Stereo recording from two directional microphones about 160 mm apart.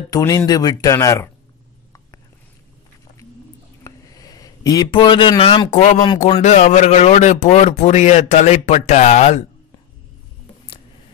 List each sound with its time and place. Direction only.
0.1 s speech: 20° left (ahead or behind)
3.8 s a sound: 20° left (ahead or behind); by 5.9 s 40° left (ahead or behind)
6.3 s speech: 45° left (ahead or behind)